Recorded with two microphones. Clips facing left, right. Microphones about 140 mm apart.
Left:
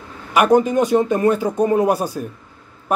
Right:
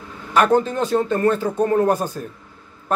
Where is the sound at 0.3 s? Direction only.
15° left (ahead or behind).